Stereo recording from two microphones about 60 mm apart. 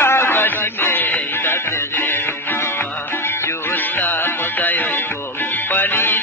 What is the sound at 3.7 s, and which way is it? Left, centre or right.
Music, left.